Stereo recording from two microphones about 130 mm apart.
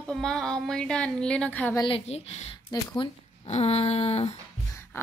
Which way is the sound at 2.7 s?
30° left (ahead or behind).